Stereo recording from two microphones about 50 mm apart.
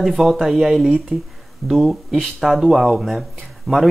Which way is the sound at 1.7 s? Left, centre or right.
Centre.